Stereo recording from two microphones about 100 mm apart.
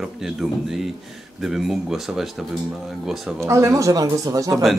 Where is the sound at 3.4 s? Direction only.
30° right (ahead or behind).